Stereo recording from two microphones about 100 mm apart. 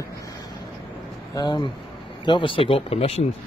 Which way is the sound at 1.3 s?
45° left (ahead or behind).